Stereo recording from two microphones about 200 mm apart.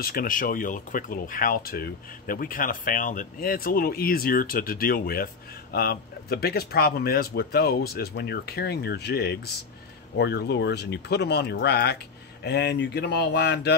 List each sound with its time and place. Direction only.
0.0 s speech: 45° left (ahead or behind)